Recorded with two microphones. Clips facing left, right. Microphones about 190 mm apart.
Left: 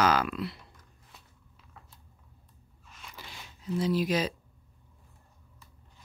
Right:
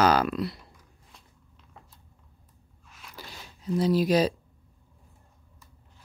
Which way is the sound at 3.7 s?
35° right (ahead or behind).